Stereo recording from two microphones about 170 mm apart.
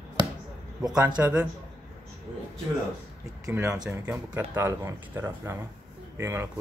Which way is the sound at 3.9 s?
15° right (ahead or behind).